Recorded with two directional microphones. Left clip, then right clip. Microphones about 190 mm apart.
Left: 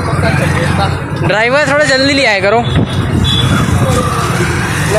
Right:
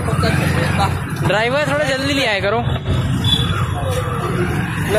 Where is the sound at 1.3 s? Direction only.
15° left (ahead or behind).